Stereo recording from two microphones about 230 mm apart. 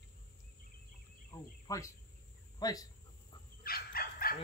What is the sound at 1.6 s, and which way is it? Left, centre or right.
Cricket, centre.